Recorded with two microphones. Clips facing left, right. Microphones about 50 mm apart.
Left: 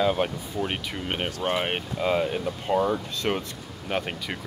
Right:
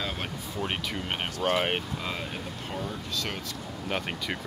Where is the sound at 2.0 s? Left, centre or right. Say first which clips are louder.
Left 10 dB; centre.